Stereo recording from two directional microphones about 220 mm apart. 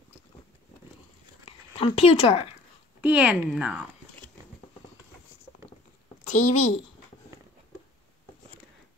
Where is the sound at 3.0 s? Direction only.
5° right (ahead or behind).